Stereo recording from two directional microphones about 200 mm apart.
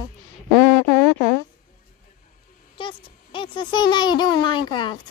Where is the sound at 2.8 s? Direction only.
25° left (ahead or behind).